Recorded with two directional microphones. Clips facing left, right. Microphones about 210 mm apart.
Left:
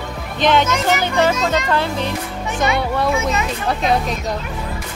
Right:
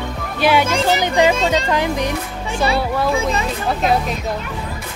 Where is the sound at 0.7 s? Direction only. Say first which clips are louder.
Right 1 dB; 30° right (ahead or behind).